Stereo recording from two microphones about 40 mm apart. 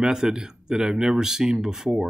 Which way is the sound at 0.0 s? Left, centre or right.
Centre.